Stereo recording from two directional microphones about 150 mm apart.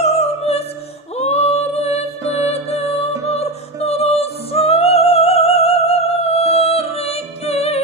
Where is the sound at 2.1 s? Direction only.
20° right (ahead or behind).